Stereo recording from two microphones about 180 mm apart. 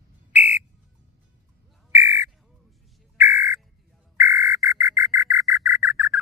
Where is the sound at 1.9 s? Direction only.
15° right (ahead or behind).